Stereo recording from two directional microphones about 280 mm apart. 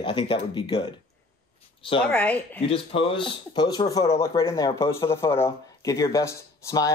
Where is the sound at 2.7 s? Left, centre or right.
Centre.